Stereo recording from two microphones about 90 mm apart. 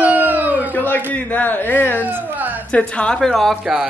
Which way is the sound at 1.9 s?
20° right (ahead or behind).